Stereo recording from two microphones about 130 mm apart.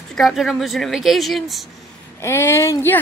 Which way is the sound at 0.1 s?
Centre (ahead or behind).